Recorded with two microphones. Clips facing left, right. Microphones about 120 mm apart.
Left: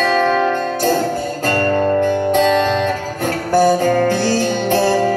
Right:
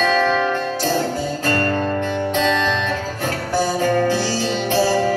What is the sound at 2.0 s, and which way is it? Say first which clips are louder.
Music: left 5 dB; 50° left (ahead or behind).